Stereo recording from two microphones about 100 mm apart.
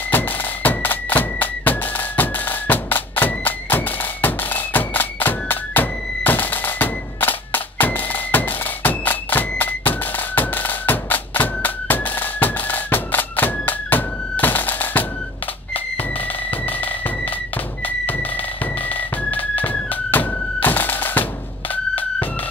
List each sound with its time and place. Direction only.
0.1 s music: 20° left (ahead or behind)
15.7 s a sound: 15° left (ahead or behind)
16.8 s music: 15° left (ahead or behind)